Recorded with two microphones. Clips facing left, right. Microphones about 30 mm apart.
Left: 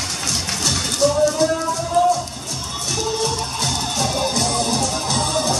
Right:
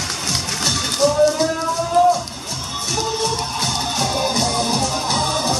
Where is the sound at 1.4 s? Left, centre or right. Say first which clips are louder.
Even; centre.